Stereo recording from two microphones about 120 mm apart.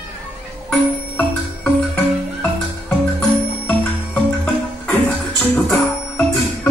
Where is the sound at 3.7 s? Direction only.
10° left (ahead or behind).